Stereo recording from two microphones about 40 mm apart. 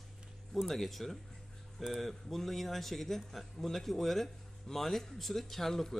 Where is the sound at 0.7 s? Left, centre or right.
Centre.